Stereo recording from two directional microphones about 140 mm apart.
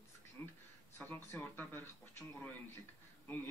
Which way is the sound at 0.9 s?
15° left (ahead or behind).